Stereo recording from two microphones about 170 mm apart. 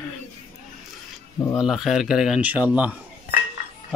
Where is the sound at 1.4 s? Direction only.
20° left (ahead or behind).